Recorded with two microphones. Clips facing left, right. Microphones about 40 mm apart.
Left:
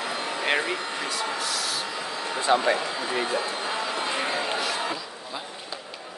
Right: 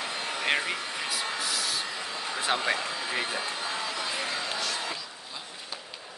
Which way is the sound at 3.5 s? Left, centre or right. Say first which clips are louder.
Left 4 dB; left.